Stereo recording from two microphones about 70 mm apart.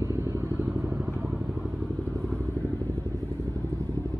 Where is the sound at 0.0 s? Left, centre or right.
Right.